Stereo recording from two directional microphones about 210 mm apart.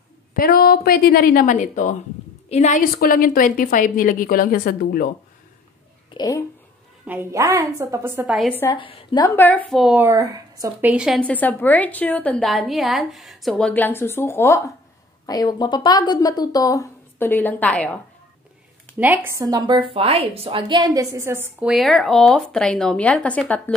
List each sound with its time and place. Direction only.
0.3 s a woman's voice: 45° left (ahead or behind)
6.1 s a woman's voice: 15° left (ahead or behind)
7.1 s a woman's voice: 10° right (ahead or behind)
8.4 s speech: 10° left (ahead or behind)
8.7 s speech: 25° left (ahead or behind); by 17.9 s 5° left (ahead or behind)
18.9 s a woman's voice: 10° right (ahead or behind); by 23.6 s 5° left (ahead or behind)